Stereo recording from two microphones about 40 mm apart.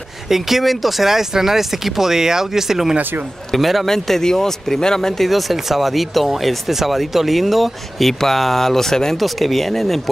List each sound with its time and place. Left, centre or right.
0.3 s speech: centre
3.0 s speech: right
3.5 s speech: centre
3.8 s speech: centre
5.3 s speech: centre